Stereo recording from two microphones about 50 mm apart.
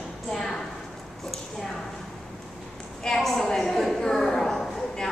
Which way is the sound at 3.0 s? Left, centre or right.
Centre.